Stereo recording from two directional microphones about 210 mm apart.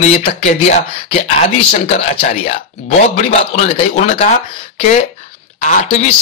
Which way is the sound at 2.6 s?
35° left (ahead or behind).